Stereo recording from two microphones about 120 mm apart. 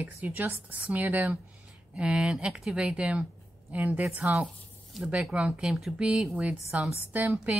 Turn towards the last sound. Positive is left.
turn(degrees=-15)  # may be behind; listen again after turning